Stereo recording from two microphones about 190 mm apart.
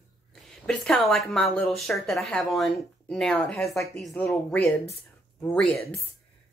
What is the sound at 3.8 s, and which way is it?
Speech, 15° left (ahead or behind).